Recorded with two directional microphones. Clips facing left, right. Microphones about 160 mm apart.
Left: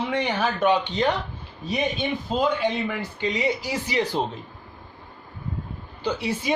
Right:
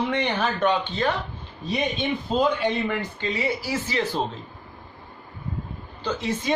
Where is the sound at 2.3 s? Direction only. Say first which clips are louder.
Right 1 dB; centre (ahead or behind).